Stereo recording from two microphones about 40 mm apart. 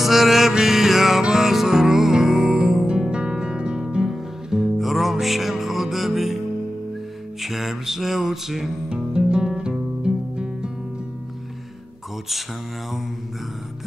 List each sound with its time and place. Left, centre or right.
0.0 s music: centre
2.9 s music: right
3.9 s guitar: centre
4.6 s music: centre
7.4 s mantra: centre
8.8 s music: right